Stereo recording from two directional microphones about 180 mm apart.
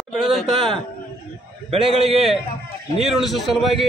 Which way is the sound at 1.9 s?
30° right (ahead or behind).